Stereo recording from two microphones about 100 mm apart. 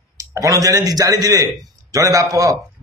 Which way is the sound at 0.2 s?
35° right (ahead or behind).